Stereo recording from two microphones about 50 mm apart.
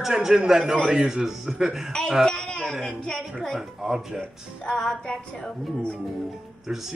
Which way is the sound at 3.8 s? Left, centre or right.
Centre.